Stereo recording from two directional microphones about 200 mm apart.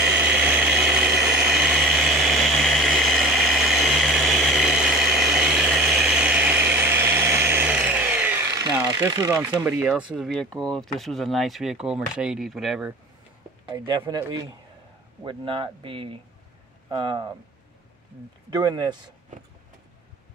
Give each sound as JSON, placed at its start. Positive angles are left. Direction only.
{"t": 0.0, "sound": "vehicle", "side_deg": -5}
{"t": 9.3, "sound": "speech", "side_deg": -10}
{"t": 13.7, "sound": "speech", "side_deg": -25}
{"t": 15.2, "sound": "speech", "side_deg": -25}
{"t": 18.5, "sound": "speech", "side_deg": -20}